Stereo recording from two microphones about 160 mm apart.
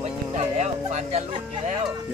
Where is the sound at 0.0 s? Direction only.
45° right (ahead or behind).